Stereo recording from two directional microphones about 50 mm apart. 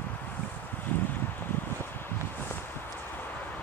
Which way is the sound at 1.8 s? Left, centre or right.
Left.